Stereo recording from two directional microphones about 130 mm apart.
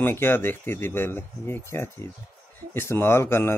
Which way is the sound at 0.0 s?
15° left (ahead or behind).